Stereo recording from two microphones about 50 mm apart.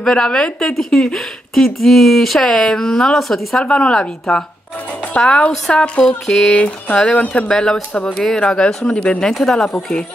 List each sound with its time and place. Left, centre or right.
0.0 s a woman's voice: centre
3.6 s speech: left
5.2 s a woman's voice: centre
7.4 s a woman's voice: centre
7.9 s speech: centre
9.3 s speech: centre